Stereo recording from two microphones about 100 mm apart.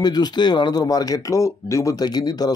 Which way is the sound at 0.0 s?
45° left (ahead or behind).